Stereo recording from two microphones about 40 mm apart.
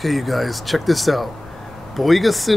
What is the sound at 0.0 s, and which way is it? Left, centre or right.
Speech, centre.